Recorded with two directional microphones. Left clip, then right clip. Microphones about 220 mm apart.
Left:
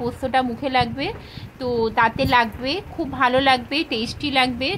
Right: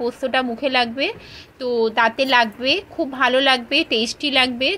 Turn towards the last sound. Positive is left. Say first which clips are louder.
# right 2 dB
turn(degrees=-5)  # may be behind; listen again after turning